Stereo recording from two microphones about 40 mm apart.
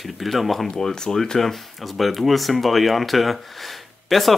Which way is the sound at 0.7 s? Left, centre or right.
Centre.